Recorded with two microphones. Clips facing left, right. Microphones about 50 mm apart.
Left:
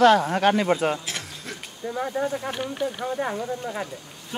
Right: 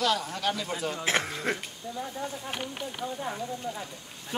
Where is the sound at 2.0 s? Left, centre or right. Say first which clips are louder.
Left 9 dB; left.